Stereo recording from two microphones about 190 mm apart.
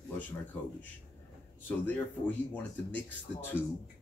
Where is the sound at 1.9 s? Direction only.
10° left (ahead or behind).